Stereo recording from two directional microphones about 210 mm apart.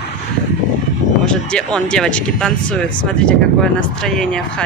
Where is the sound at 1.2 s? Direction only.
5° left (ahead or behind).